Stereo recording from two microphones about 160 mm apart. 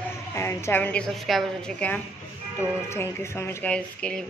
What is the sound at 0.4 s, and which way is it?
A man's voice, 15° left (ahead or behind).